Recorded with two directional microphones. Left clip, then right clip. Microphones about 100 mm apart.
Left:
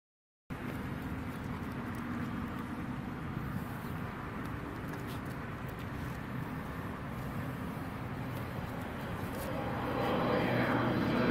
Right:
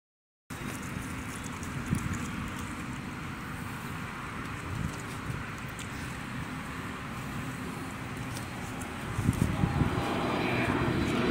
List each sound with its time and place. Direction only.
10.0 s vehicle: 30° left (ahead or behind)